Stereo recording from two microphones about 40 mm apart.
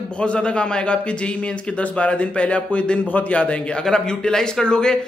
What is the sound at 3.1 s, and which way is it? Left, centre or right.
Speech, left.